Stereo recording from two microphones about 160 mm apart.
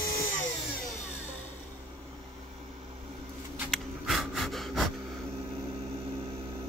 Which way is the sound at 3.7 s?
Centre (ahead or behind).